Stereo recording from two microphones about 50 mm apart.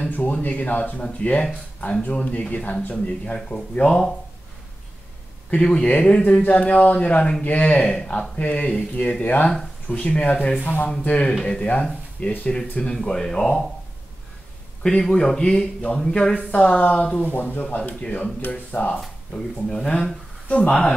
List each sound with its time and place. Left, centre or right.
0.1 s speech: left
5.5 s a man's voice: centre
6.2 s a man's voice: left; by 13.7 s centre
14.8 s a man's voice: centre
16.3 s speech: left
17.3 s speech: left
19.3 s a man's voice: centre
20.4 s speech: left